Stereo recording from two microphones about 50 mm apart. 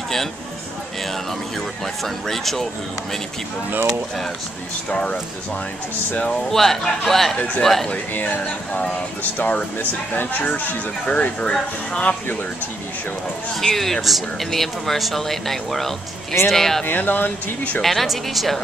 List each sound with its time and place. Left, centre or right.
2.0 s speech: centre
4.8 s speech: left
6.5 s speech: centre
7.9 s speech: left
11.1 s speech: left
13.6 s speech: centre
16.8 s speech: left
17.8 s speech: centre